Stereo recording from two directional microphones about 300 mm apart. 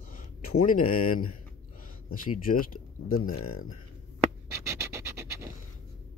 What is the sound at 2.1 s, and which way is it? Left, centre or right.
Speech, left.